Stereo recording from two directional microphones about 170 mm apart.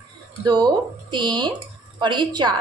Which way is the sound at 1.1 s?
25° right (ahead or behind).